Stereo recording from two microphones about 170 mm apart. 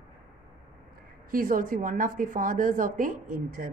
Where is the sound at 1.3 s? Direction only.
55° right (ahead or behind).